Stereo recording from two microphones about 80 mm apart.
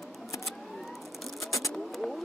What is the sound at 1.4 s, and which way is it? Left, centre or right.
Vehicle, left.